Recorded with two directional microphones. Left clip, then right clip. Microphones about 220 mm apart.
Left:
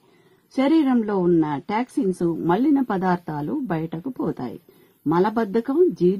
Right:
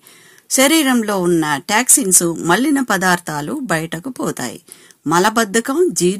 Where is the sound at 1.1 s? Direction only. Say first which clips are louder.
Right 4 dB; 25° right (ahead or behind).